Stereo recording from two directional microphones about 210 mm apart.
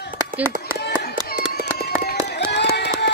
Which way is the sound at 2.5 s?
55° left (ahead or behind).